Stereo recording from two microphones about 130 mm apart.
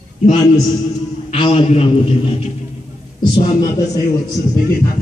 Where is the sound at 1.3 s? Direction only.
45° left (ahead or behind).